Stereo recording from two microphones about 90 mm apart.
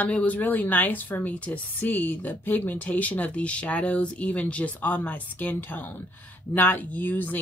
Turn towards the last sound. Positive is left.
turn(degrees=20)  # may be behind; listen again after turning